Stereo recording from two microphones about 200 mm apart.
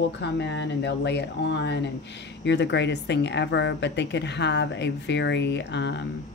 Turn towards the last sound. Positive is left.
turn(degrees=60)  # may be behind; listen again after turning